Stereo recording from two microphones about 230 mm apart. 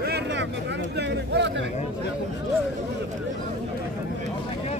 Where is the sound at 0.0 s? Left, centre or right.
Right.